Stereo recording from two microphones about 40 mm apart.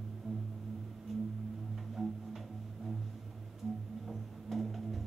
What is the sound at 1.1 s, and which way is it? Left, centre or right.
Music, centre.